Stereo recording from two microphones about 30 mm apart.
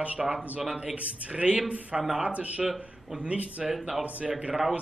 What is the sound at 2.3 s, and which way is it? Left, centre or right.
A man's voice, right.